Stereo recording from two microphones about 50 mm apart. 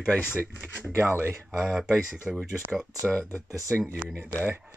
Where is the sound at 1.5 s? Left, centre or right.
Centre.